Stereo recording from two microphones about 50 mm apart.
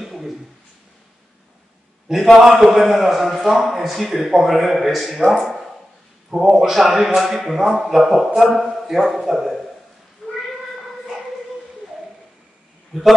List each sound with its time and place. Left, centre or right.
0.0 s a sound: centre
2.0 s a man's voice: centre
6.3 s a man's voice: centre
10.2 s cat: centre